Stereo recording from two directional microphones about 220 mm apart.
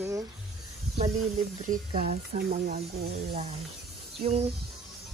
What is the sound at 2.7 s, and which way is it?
Speech, 45° right (ahead or behind).